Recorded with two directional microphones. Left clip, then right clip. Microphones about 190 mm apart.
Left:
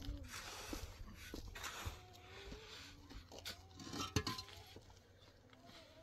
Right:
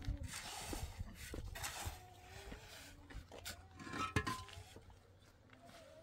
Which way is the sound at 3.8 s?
15° left (ahead or behind).